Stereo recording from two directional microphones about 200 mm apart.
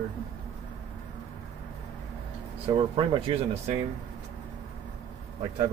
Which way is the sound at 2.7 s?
25° right (ahead or behind).